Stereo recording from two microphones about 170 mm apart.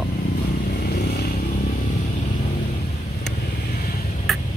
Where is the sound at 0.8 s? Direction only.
65° left (ahead or behind).